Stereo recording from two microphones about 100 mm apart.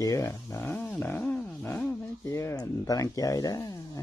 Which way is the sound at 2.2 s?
30° left (ahead or behind).